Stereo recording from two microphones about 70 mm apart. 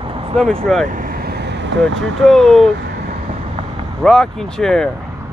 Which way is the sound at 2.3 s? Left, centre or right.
Centre.